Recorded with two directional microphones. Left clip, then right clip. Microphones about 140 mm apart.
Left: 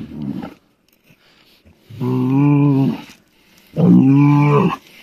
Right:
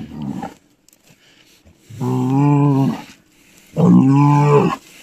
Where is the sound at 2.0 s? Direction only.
5° right (ahead or behind).